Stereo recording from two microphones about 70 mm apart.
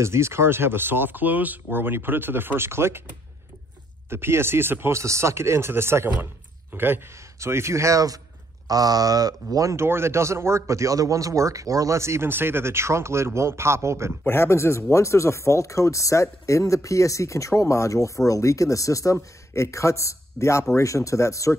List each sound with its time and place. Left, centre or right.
0.0 s speech: right
4.1 s speech: right
14.2 s speech: left